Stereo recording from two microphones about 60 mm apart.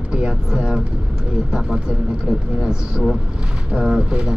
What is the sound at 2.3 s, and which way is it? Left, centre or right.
A man's voice, centre.